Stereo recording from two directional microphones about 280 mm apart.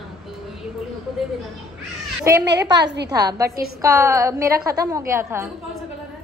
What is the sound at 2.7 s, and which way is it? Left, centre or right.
Speech, right.